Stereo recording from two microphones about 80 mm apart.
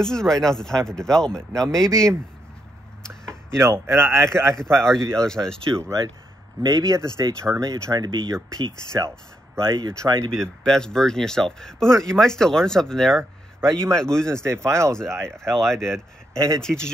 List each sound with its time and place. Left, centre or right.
0.0 s speech: centre
3.5 s speech: right
5.2 s speech: centre
5.8 s speech: right
7.9 s speech: right
9.7 s speech: right
9.9 s speech: right
10.4 s speech: centre
13.6 s a man's voice: right
13.9 s speech: centre
14.3 s speech: right
15.3 s speech: centre
16.3 s speech: right
16.6 s speech: centre